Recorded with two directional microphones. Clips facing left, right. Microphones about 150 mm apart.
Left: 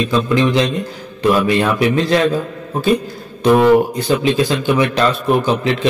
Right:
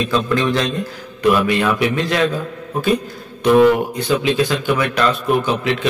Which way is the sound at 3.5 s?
35° left (ahead or behind).